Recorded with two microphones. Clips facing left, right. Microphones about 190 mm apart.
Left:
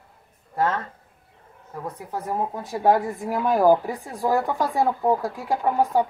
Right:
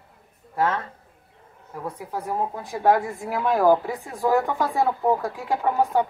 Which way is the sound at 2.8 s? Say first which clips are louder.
Even; 15° left (ahead or behind).